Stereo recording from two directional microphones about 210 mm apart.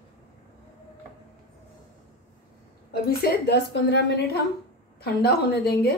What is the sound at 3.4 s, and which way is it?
Speech, 55° left (ahead or behind).